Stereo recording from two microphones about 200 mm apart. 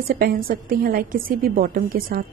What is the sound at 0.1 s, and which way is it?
A woman's voice, 45° right (ahead or behind).